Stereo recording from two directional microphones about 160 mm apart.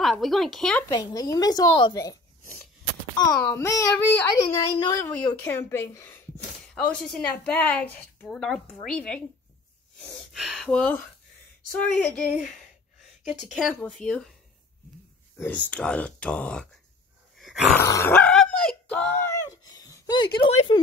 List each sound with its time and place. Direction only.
0.0 s speech: centre (ahead or behind)
0.8 s a woman's voice: 25° left (ahead or behind)
6.7 s a woman's voice: 5° left (ahead or behind)
15.3 s a woman's voice: 10° left (ahead or behind)
17.7 s a woman's voice: 15° left (ahead or behind)
18.1 s a sound: 5° left (ahead or behind); by 20.2 s 25° left (ahead or behind)
20.3 s speech: 30° left (ahead or behind)